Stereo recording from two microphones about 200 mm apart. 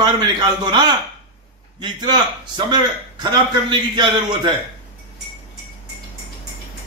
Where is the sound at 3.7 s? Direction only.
25° right (ahead or behind).